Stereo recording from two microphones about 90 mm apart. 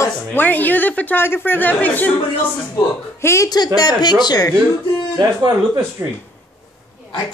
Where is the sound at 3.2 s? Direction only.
30° left (ahead or behind).